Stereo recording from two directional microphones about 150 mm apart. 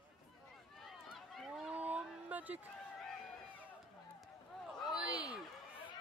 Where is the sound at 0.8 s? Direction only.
Centre (ahead or behind).